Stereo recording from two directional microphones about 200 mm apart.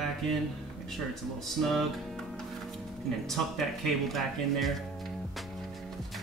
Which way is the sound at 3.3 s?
Centre (ahead or behind).